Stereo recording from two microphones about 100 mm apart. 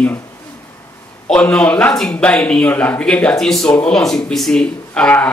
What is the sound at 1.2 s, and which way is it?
Speech, 10° left (ahead or behind).